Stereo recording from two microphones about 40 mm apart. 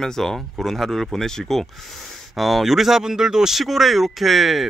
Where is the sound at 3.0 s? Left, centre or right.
Centre.